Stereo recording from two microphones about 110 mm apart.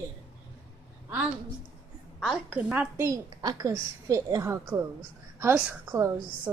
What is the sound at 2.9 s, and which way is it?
A woman's voice, 30° right (ahead or behind).